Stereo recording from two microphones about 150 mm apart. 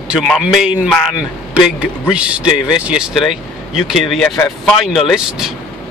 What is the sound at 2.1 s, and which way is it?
Speech, 5° right (ahead or behind).